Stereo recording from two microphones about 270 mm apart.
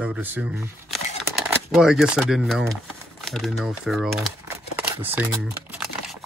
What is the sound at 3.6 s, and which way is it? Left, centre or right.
Speech, centre.